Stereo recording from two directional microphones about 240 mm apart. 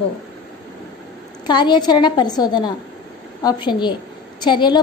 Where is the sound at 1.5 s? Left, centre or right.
Centre.